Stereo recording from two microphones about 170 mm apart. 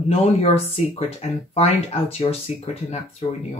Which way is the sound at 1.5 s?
35° left (ahead or behind).